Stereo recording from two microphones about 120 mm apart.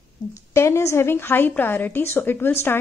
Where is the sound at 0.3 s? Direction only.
25° left (ahead or behind).